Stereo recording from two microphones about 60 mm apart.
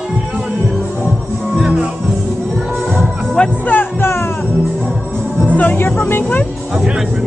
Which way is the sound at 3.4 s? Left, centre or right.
Centre.